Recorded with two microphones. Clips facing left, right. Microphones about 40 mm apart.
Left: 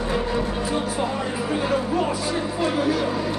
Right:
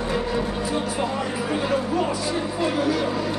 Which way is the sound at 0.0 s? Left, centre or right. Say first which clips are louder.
Left 1 dB; centre.